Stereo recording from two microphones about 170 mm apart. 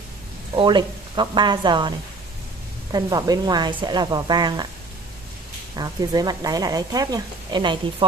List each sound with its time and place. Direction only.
0.6 s speech: 25° right (ahead or behind)
5.8 s speech: 25° right (ahead or behind)